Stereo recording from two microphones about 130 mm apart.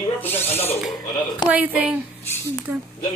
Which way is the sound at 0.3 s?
15° left (ahead or behind).